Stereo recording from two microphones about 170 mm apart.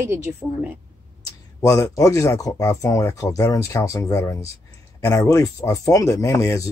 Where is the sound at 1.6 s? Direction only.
20° left (ahead or behind).